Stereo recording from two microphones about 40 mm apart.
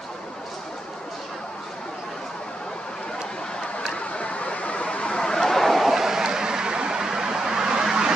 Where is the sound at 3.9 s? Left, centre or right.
Left.